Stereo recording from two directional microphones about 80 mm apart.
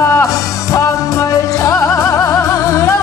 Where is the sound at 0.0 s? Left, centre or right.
Left.